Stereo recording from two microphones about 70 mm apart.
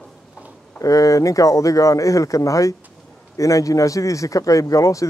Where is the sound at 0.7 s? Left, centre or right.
Left.